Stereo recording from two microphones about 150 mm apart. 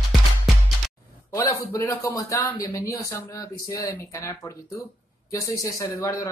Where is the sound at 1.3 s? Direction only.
20° left (ahead or behind).